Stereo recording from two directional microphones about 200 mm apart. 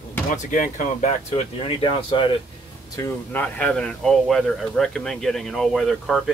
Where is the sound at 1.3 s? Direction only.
30° left (ahead or behind).